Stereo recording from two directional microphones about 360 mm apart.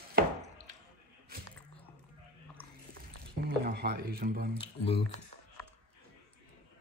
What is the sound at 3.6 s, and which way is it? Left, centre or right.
Speech, right.